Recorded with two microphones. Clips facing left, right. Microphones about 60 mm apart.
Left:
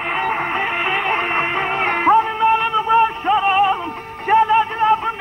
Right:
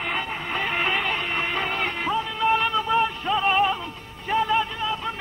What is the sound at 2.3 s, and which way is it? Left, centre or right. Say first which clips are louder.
Music: left 6 dB; left.